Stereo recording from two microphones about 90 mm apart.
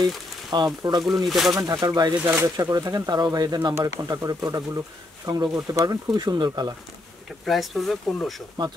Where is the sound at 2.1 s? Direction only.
25° right (ahead or behind).